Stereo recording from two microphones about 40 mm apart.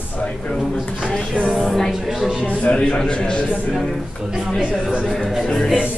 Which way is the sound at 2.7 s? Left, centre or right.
Left.